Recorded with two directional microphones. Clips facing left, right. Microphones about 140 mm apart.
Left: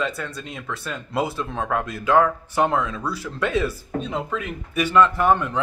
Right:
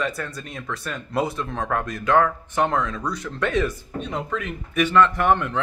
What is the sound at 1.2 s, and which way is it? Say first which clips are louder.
Speech: even; 5° left (ahead or behind).